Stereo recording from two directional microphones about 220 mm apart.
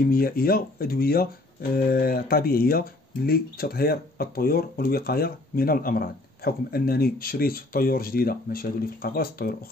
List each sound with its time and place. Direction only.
0.0 s speech: 40° left (ahead or behind)